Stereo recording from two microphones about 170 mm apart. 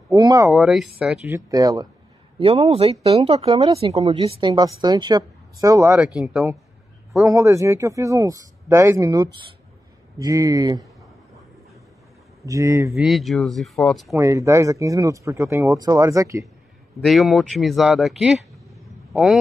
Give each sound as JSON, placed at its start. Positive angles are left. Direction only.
{"t": 0.1, "sound": "speech", "side_deg": -20}
{"t": 0.5, "sound": "speech", "side_deg": 0}
{"t": 1.3, "sound": "speech", "side_deg": -20}
{"t": 2.3, "sound": "speech", "side_deg": -35}
{"t": 6.1, "sound": "speech", "side_deg": -5}
{"t": 7.2, "sound": "speech", "side_deg": -20}
{"t": 12.4, "sound": "speech", "side_deg": -20}
{"t": 12.9, "sound": "speech", "side_deg": 0}
{"t": 14.1, "sound": "speech", "side_deg": -15}
{"t": 17.0, "sound": "speech", "side_deg": 0}